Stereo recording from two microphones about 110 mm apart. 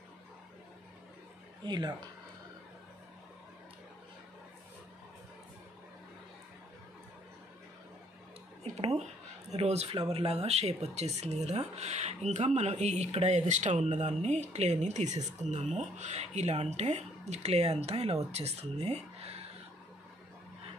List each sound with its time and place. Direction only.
1.7 s speech: 40° right (ahead or behind)
8.7 s a sound: 75° right (ahead or behind)
9.5 s speech: 75° right (ahead or behind)